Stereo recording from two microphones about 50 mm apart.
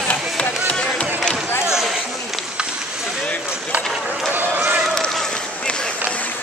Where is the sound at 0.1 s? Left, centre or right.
Left.